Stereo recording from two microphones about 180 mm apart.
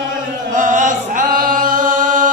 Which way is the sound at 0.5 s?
45° right (ahead or behind).